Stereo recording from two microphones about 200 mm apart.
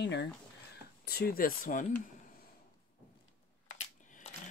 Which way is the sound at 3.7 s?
40° left (ahead or behind).